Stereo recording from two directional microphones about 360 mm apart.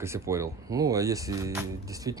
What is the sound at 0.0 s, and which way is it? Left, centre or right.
Speech, centre.